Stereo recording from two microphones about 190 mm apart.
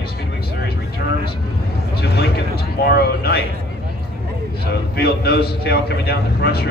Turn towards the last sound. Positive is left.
turn(degrees=60)  # may be behind; listen again after turning